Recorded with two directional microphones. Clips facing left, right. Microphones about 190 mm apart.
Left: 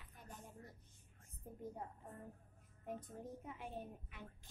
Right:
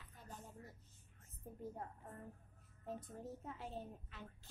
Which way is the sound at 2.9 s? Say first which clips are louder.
Even; 15° left (ahead or behind).